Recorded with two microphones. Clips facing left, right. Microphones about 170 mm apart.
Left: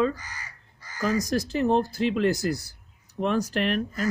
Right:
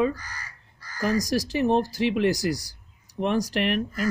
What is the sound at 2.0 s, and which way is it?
A man's voice, 15° right (ahead or behind).